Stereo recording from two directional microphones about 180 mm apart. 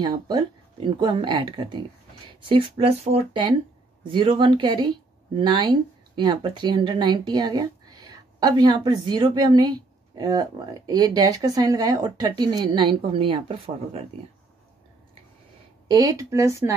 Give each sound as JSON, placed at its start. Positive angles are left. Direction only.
{"t": 0.0, "sound": "speech", "side_deg": -20}
{"t": 15.9, "sound": "speech", "side_deg": -20}